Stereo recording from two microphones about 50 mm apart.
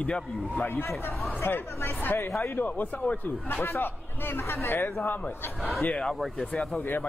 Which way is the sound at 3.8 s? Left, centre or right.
Left.